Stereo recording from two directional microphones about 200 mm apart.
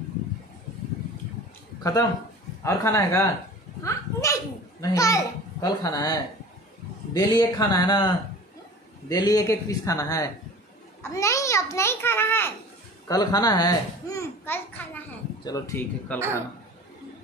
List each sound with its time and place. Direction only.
1.8 s a man's voice: 15° left (ahead or behind)
3.8 s a sound: 15° left (ahead or behind)
4.8 s a child's voice: 15° left (ahead or behind)
7.2 s a child's voice: 20° left (ahead or behind)
9.1 s a child's voice: 20° left (ahead or behind)